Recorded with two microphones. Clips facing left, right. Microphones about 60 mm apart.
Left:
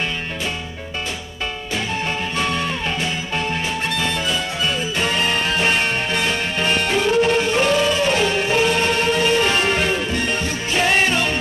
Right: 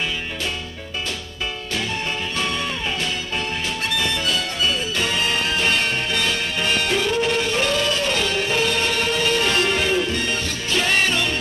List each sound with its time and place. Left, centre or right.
2.3 s music: centre
4.0 s harmonica: centre
4.9 s music: centre